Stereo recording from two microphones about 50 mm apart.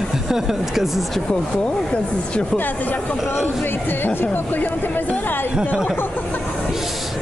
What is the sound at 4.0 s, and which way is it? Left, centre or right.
Speech, left.